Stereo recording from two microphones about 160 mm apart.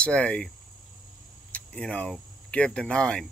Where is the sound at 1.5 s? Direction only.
5° left (ahead or behind).